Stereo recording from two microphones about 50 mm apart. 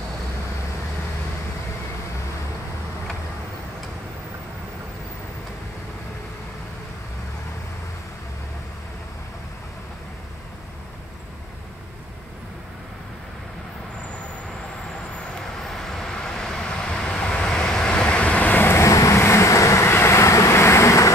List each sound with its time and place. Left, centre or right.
15.3 s vehicle: centre; by 18.6 s left
18.8 s vehicle: left